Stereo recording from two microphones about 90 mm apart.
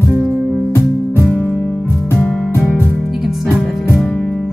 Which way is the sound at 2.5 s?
25° left (ahead or behind).